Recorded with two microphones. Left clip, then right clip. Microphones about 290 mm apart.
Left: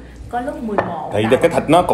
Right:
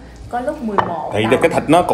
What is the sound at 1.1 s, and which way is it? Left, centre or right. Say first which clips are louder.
Speech: even; centre.